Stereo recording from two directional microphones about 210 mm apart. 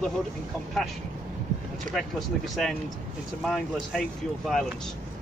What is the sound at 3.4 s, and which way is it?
Speech, centre (ahead or behind).